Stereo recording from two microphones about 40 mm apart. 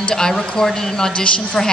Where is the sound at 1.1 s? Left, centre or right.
Left.